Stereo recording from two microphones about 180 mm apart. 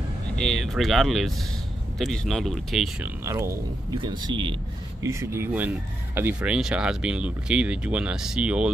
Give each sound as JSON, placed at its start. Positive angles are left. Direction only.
{"t": 0.4, "sound": "speech", "side_deg": 5}
{"t": 3.3, "sound": "speech", "side_deg": -15}
{"t": 5.0, "sound": "speech", "side_deg": -15}